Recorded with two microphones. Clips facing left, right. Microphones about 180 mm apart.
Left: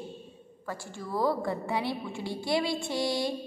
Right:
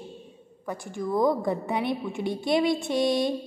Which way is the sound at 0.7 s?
15° right (ahead or behind).